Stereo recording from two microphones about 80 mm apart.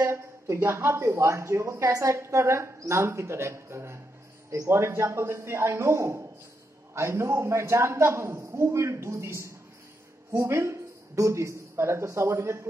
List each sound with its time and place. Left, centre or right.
0.0 s a woman's voice: right